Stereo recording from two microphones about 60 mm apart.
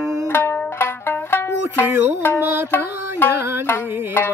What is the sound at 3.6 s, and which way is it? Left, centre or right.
Music, left.